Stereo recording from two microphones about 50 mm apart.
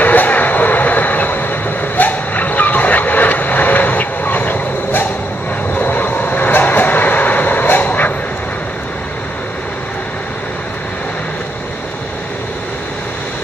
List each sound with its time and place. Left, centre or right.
0.0 s vehicle: left
7.8 s dog: left